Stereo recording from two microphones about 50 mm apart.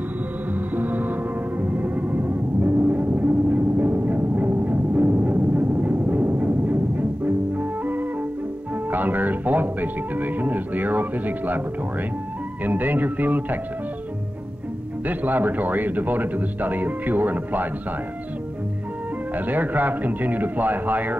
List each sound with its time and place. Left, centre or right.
0.7 s music: right
8.9 s speech: right
12.6 s speech: right
15.0 s speech: right
19.3 s speech: right